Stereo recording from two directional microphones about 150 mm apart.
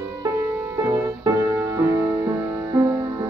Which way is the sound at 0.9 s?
20° right (ahead or behind).